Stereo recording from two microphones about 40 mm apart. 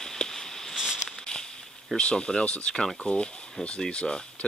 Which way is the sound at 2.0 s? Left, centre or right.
Left.